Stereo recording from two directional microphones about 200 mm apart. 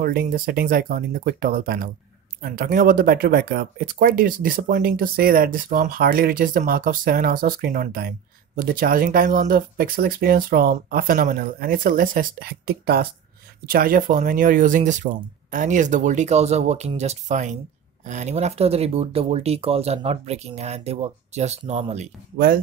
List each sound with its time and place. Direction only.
0.0 s speech: 45° right (ahead or behind)